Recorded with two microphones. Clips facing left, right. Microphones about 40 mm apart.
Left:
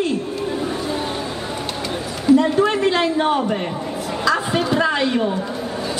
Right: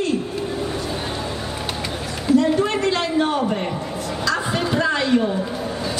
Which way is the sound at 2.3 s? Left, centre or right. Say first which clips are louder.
Left 2 dB; centre.